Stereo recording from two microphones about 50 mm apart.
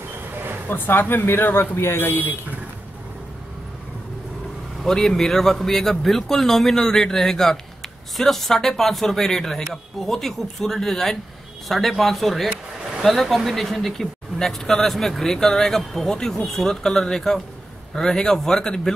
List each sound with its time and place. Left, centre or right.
0.7 s speech: left
4.8 s speech: centre